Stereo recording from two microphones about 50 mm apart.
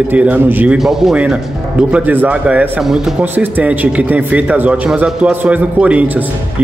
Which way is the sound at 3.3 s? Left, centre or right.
Right.